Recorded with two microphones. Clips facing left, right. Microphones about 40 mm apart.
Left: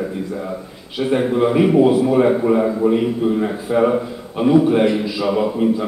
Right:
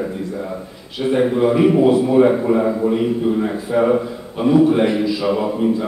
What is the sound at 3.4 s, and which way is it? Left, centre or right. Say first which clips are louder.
A man's voice: even; centre.